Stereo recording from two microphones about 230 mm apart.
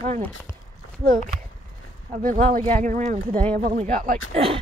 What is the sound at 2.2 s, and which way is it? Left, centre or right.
Speech, right.